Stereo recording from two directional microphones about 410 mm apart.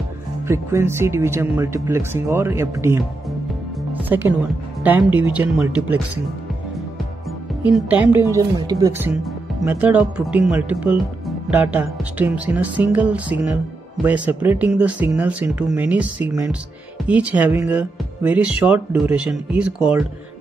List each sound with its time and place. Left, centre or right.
0.5 s speech: centre
7.6 s speech: centre